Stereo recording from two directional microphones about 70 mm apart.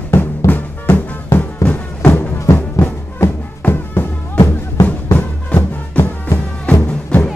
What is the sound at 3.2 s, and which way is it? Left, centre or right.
Music, left.